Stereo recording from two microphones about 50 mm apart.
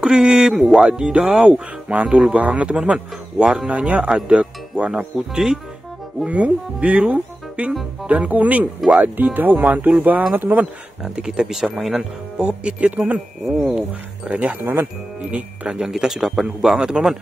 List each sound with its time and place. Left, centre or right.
0.0 s a man's voice: centre
0.6 s speech: centre
0.8 s a man's voice: centre
1.9 s a man's voice: right
6.2 s a man's voice: right
11.0 s speech: centre
12.4 s a man's voice: right
15.3 s a man's voice: right
15.9 s a man's voice: centre